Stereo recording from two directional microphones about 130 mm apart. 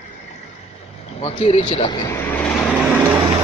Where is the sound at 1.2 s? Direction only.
50° left (ahead or behind).